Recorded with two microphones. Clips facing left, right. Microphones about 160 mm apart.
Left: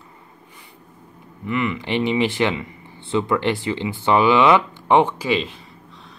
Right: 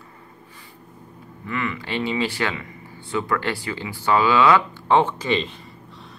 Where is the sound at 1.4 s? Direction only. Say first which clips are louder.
Left 4 dB; 20° left (ahead or behind).